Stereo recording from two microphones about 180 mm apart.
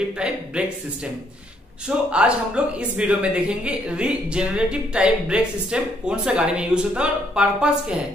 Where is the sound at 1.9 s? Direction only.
5° right (ahead or behind).